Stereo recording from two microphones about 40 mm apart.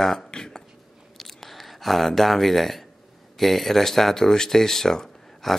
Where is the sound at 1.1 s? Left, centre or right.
Centre.